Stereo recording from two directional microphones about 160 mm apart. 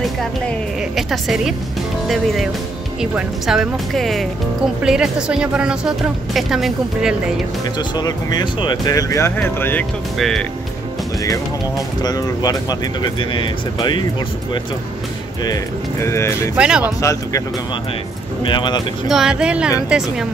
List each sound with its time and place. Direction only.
0.9 s a woman's voice: centre (ahead or behind)
7.9 s speech: 25° left (ahead or behind)
10.1 s speech: centre (ahead or behind)
12.0 s speech: 25° left (ahead or behind)
15.4 s speech: 20° left (ahead or behind)
16.5 s speech: 5° right (ahead or behind)
16.8 s speech: 20° left (ahead or behind)
18.4 s speech: 30° left (ahead or behind)
19.0 s speech: 5° right (ahead or behind)